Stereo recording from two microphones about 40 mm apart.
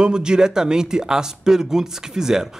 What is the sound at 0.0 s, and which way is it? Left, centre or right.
A man's voice, right.